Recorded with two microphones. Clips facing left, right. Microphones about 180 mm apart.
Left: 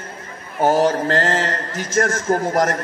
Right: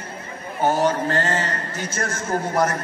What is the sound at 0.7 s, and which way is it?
A man's voice, 90° left.